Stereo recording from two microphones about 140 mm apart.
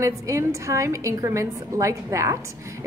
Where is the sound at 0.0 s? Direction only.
20° right (ahead or behind).